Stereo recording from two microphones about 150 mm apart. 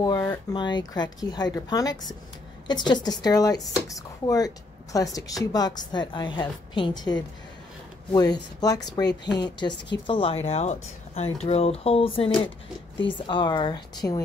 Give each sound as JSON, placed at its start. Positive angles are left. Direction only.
{"t": 0.5, "sound": "a woman's voice", "side_deg": 30}
{"t": 13.3, "sound": "speech", "side_deg": 30}